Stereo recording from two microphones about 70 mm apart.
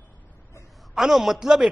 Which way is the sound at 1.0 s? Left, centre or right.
Centre.